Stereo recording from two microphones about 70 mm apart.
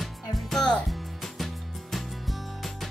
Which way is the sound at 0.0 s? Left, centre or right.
Centre.